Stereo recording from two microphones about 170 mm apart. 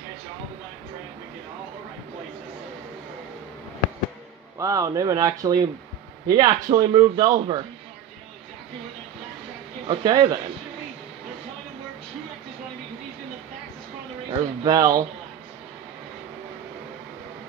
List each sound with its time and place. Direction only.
4.6 s a man's voice: 20° right (ahead or behind)
9.8 s a man's voice: 30° right (ahead or behind)
14.4 s a man's voice: 20° right (ahead or behind)